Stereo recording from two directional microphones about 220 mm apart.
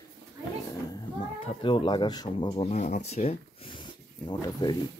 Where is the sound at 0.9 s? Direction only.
25° left (ahead or behind).